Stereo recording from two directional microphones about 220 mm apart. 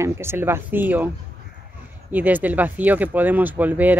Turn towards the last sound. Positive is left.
turn(degrees=-10)  # may be behind; listen again after turning